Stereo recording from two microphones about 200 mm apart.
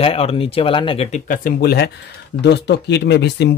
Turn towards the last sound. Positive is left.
turn(degrees=55)  # may be behind; listen again after turning